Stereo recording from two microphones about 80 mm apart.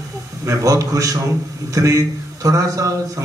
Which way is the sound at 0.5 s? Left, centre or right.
Right.